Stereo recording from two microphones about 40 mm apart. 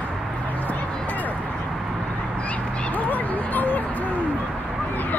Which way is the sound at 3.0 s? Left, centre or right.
Left.